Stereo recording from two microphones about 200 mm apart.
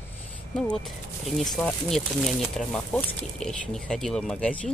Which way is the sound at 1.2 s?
Centre (ahead or behind).